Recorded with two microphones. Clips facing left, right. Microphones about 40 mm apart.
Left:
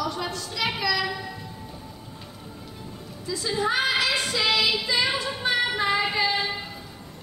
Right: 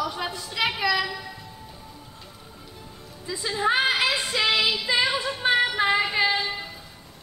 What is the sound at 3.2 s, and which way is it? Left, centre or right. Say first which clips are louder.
Speech: left 1 dB; right.